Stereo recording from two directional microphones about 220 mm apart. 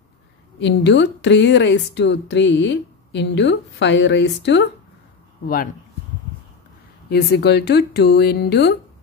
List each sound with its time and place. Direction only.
0.6 s speech: 55° left (ahead or behind)
7.1 s speech: 45° left (ahead or behind)